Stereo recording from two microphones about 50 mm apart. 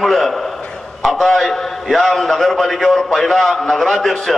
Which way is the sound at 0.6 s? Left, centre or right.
Centre.